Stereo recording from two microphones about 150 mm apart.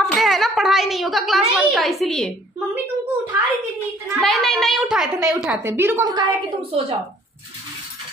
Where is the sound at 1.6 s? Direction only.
Centre (ahead or behind).